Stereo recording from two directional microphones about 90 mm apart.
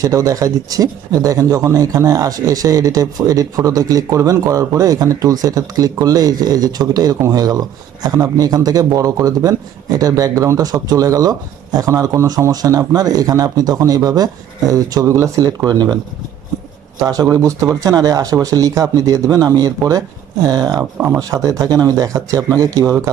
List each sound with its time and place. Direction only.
0.0 s speech: 40° right (ahead or behind)
15.6 s speech: 50° right (ahead or behind)
17.0 s speech: 45° right (ahead or behind)